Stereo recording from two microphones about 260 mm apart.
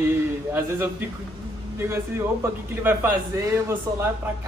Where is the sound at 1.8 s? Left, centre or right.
Centre.